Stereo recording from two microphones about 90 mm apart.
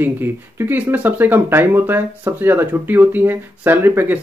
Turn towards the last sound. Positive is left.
turn(degrees=-25)  # may be behind; listen again after turning